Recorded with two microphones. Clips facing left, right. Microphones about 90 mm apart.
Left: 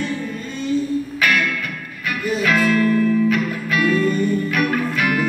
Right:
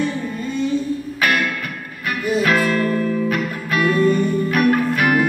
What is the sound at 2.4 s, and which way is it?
Music, 40° right (ahead or behind).